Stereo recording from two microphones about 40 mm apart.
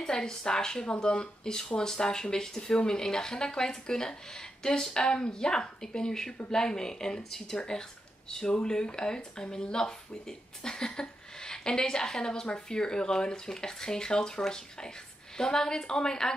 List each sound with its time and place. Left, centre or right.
0.0 s a woman's voice: centre